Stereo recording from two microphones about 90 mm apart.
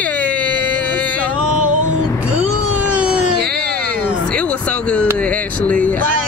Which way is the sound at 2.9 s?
15° right (ahead or behind).